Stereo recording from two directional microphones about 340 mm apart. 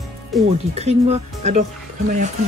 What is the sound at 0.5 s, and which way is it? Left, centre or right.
Speech, centre.